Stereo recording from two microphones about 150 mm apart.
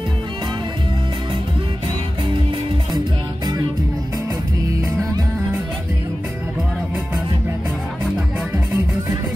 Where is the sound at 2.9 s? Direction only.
25° right (ahead or behind).